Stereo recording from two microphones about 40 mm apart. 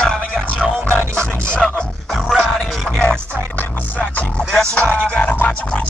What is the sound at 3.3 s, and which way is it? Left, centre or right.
Music, left.